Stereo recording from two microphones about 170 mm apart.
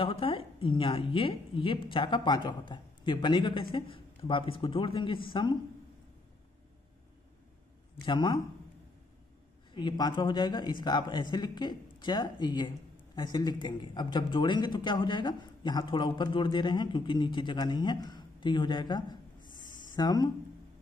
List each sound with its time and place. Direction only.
0.0 s a woman's voice: 30° left (ahead or behind)
8.0 s speech: 25° left (ahead or behind)
9.8 s speech: 25° left (ahead or behind)